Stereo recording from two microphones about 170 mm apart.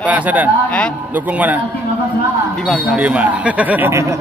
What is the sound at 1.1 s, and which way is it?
Speech, 10° right (ahead or behind).